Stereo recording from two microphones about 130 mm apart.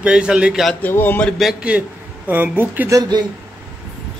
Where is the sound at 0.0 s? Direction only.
10° right (ahead or behind).